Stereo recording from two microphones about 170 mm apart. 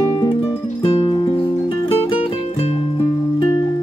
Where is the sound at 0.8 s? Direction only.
30° left (ahead or behind).